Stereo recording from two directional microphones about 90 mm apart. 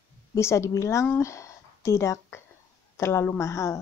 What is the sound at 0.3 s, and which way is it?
A woman's voice, 35° left (ahead or behind).